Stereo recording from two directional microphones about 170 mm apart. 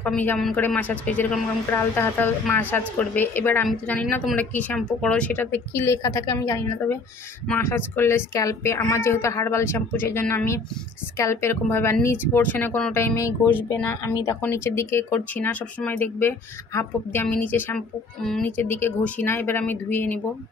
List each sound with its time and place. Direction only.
0.0 s speech: 10° left (ahead or behind)
18.6 s speech: 15° left (ahead or behind)